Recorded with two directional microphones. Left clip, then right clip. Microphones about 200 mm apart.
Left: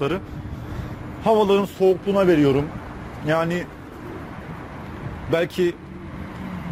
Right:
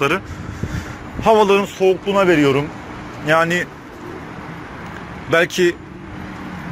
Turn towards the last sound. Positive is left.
turn(degrees=0)  # may be behind; listen again after turning